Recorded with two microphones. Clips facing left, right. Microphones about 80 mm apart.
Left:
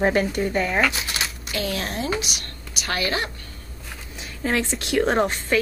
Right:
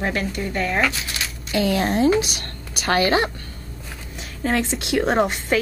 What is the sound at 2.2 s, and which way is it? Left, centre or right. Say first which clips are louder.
Speech: right 2 dB; right.